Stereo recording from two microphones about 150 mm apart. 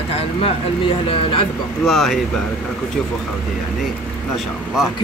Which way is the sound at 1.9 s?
Centre (ahead or behind).